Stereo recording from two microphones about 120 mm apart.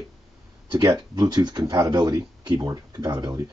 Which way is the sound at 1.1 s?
35° right (ahead or behind).